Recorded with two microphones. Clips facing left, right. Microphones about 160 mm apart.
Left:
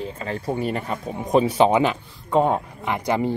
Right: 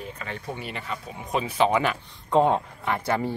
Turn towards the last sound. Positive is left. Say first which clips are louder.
# left 3 dB
turn(degrees=15)  # may be behind; listen again after turning